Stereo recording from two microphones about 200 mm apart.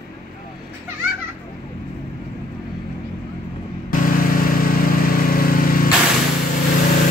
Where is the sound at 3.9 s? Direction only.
45° left (ahead or behind).